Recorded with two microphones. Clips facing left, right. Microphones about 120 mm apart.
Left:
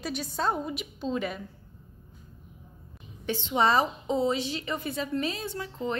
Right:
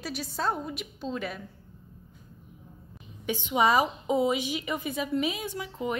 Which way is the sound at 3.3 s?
15° right (ahead or behind).